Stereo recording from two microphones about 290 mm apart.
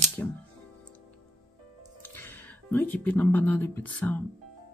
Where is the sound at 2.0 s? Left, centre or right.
Centre.